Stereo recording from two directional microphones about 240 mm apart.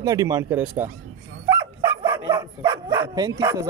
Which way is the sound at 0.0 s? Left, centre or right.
Centre.